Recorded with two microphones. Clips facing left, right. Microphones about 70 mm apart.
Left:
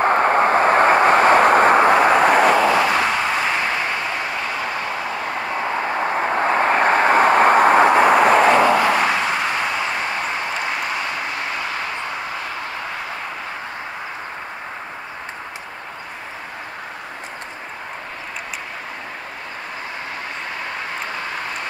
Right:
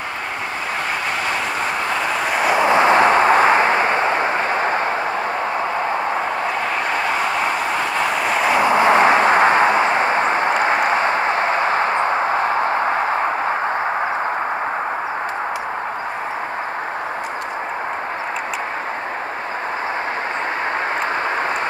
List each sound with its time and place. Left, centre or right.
0.0 s vehicle: left
2.6 s a sound: right
6.6 s vehicle: left
8.6 s vehicle: right